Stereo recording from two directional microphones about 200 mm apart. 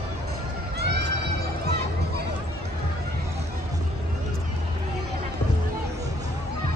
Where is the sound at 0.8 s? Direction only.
60° right (ahead or behind).